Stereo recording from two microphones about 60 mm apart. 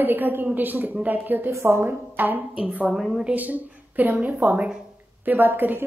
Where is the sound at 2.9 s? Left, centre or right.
Centre.